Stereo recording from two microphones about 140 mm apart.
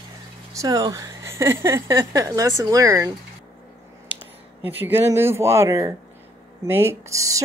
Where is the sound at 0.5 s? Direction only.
25° right (ahead or behind).